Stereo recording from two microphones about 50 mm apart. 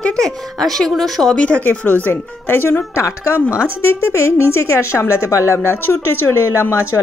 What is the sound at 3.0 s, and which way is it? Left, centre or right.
Speech, left.